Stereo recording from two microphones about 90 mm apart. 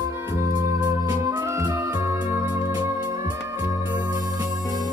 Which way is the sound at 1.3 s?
30° right (ahead or behind).